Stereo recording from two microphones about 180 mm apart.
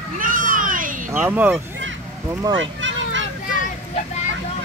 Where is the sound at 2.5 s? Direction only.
90° right.